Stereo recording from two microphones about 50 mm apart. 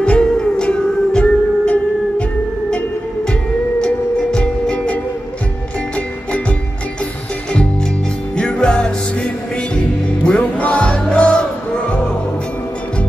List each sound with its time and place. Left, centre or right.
0.0 s music: centre
3.8 s music: centre
8.4 s music: centre